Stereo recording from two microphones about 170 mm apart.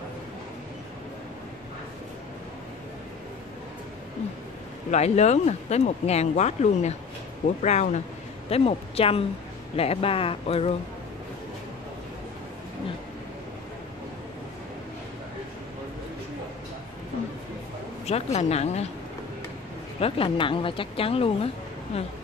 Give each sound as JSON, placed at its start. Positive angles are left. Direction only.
{"t": 4.9, "sound": "speech", "side_deg": 40}
{"t": 18.0, "sound": "speech", "side_deg": 40}
{"t": 20.0, "sound": "speech", "side_deg": 35}